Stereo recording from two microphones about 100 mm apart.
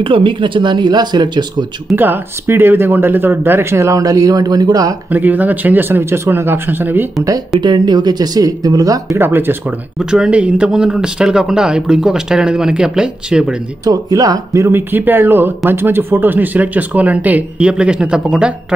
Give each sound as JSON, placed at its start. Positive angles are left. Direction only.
{"t": 0.0, "sound": "speech", "side_deg": -55}
{"t": 2.0, "sound": "speech", "side_deg": -20}
{"t": 5.1, "sound": "speech", "side_deg": -15}
{"t": 7.6, "sound": "speech", "side_deg": -50}
{"t": 9.2, "sound": "speech", "side_deg": -20}
{"t": 9.9, "sound": "speech", "side_deg": -5}
{"t": 13.8, "sound": "speech", "side_deg": -35}